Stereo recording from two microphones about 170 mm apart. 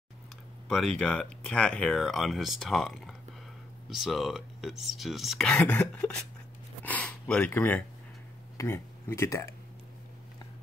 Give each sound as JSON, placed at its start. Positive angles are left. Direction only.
{"t": 0.7, "sound": "speech", "side_deg": 0}
{"t": 6.8, "sound": "gasp", "side_deg": 10}
{"t": 8.5, "sound": "speech", "side_deg": 15}